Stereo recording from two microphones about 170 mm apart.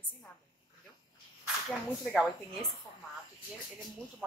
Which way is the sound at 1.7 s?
Centre (ahead or behind).